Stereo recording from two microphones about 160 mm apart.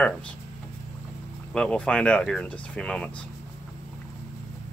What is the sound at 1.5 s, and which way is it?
Speech, 5° left (ahead or behind).